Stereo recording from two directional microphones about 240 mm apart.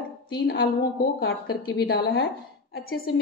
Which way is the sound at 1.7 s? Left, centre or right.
Left.